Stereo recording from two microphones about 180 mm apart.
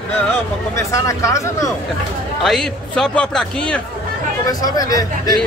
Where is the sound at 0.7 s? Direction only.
15° left (ahead or behind).